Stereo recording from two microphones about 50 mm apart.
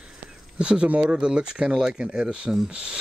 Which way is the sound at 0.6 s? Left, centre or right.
Centre.